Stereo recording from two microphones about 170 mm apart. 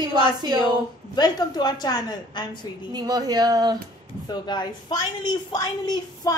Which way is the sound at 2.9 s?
20° right (ahead or behind).